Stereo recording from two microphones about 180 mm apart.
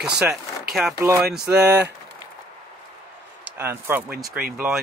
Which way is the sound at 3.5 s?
10° right (ahead or behind).